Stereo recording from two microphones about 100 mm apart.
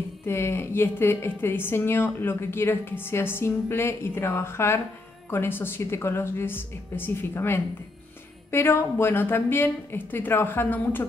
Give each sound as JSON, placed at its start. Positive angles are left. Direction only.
{"t": 0.3, "sound": "a woman's voice", "side_deg": 25}